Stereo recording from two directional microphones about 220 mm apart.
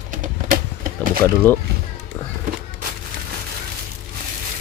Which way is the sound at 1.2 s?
10° left (ahead or behind).